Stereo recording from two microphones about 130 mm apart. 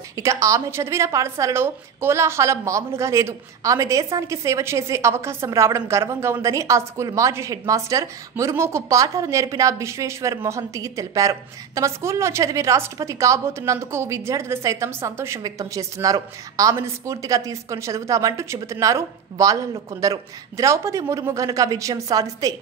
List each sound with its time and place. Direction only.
0.1 s a woman's voice: 25° right (ahead or behind)